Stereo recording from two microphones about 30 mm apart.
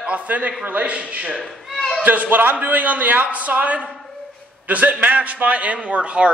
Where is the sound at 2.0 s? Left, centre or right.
Right.